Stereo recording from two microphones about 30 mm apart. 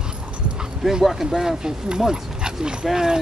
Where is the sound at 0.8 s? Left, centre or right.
Centre.